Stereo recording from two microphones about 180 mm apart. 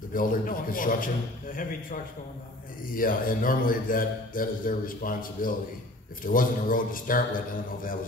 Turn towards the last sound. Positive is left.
turn(degrees=50)  # may be behind; listen again after turning